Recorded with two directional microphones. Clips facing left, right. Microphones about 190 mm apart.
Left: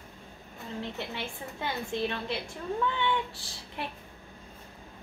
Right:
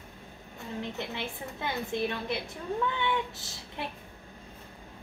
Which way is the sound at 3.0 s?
20° right (ahead or behind).